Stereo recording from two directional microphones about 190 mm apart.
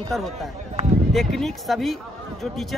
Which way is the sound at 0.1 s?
Centre (ahead or behind).